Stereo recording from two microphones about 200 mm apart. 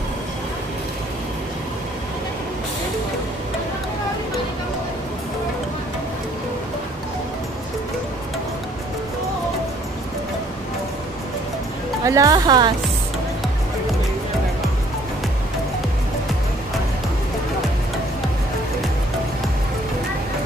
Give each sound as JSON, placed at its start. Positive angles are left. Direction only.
{"t": 12.0, "sound": "speech", "side_deg": -15}